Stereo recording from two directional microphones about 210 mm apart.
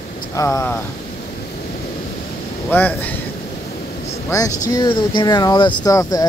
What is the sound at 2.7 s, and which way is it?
Speech, 10° left (ahead or behind).